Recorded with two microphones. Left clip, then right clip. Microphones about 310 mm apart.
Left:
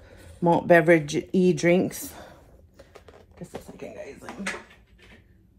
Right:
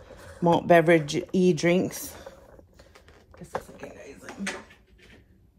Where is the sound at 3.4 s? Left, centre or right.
Centre.